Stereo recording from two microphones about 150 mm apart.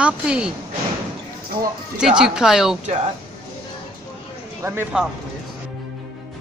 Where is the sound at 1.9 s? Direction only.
5° right (ahead or behind).